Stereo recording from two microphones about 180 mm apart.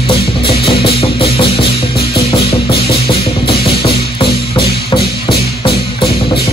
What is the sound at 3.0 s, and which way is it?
Music, 30° left (ahead or behind).